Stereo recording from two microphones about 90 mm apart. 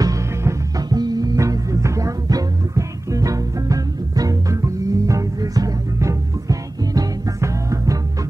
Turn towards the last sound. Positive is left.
turn(degrees=-40)  # may be behind; listen again after turning